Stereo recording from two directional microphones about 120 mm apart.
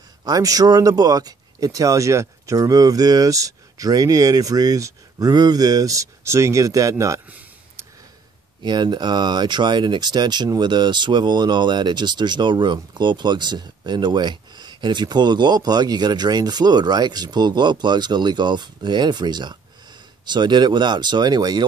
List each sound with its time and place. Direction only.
0.2 s speech: 30° right (ahead or behind)
7.2 s a sound: 15° right (ahead or behind)
8.6 s speech: 40° right (ahead or behind)